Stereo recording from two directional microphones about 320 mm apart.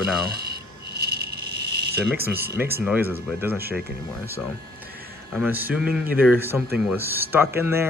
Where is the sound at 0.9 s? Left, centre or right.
Right.